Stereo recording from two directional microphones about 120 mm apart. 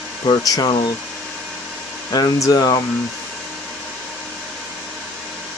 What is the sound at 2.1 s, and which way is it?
Speech, 35° left (ahead or behind).